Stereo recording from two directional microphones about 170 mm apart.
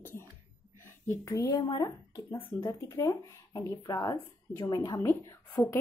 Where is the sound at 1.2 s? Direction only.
15° left (ahead or behind).